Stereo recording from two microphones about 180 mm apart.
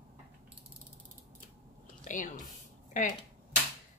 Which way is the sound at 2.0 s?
45° left (ahead or behind).